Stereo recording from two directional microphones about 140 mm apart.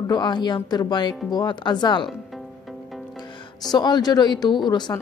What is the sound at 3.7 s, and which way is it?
A woman's voice, 30° left (ahead or behind).